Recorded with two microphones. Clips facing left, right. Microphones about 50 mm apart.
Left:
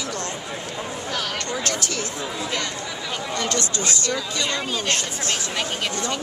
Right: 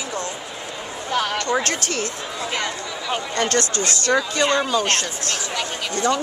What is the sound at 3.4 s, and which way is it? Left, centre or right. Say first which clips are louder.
Speech: right 5 dB; right.